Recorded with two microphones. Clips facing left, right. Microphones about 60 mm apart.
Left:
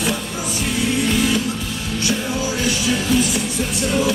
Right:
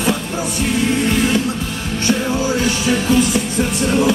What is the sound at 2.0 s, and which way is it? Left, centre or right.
Music, right.